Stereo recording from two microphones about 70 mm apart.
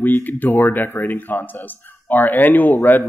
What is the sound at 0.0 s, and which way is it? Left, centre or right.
Speech, left.